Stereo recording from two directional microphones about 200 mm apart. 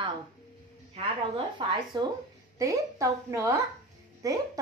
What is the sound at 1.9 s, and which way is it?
A child's voice, 25° right (ahead or behind).